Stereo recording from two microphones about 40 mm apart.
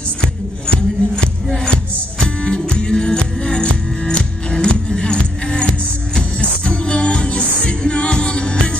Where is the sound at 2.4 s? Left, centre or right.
Left.